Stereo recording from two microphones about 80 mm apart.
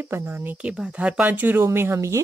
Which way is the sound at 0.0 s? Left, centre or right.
Right.